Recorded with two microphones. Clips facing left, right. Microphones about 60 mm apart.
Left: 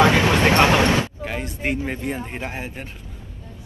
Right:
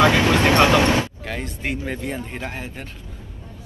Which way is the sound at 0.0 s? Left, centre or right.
Left.